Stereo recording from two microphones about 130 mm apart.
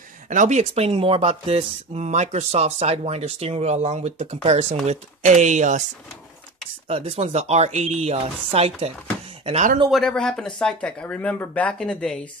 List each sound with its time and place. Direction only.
0.3 s speech: 70° right (ahead or behind)
6.9 s speech: 55° right (ahead or behind)
9.8 s speech: centre (ahead or behind)